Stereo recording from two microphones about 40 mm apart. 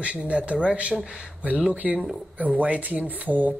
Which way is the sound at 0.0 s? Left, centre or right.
Right.